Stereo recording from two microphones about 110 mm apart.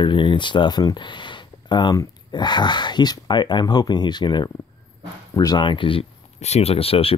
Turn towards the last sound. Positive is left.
turn(degrees=60)  # may be behind; listen again after turning